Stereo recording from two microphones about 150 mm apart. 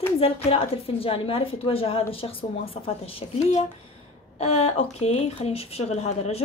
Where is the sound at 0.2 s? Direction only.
40° left (ahead or behind).